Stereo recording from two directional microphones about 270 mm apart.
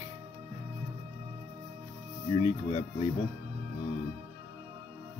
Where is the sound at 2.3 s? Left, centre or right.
Left.